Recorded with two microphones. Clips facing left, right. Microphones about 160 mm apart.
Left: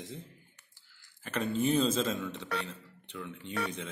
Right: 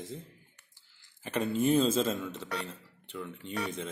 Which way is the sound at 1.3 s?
10° right (ahead or behind).